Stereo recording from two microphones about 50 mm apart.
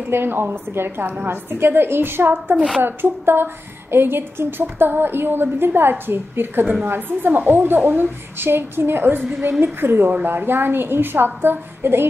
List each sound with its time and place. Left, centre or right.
0.1 s a woman's voice: right
6.6 s a woman's voice: right